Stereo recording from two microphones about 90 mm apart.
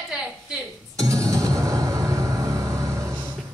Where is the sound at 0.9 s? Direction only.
40° right (ahead or behind).